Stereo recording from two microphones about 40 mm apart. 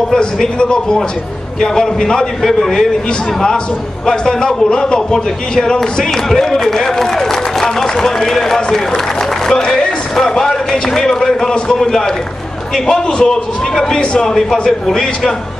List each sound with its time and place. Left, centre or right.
0.6 s a man's voice: left
14.2 s a man's voice: centre